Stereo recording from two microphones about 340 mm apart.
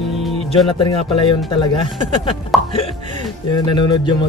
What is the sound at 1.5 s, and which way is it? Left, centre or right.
Speech, centre.